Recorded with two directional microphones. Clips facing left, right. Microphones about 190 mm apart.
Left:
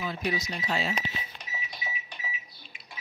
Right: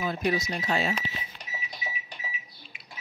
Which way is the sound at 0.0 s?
50° right (ahead or behind).